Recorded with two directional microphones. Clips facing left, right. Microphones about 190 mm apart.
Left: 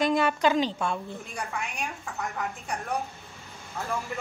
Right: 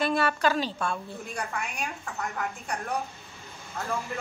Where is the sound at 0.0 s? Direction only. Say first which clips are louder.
Left 2 dB; 15° left (ahead or behind).